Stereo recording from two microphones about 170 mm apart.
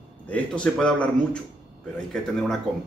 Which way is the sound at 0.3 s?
5° left (ahead or behind).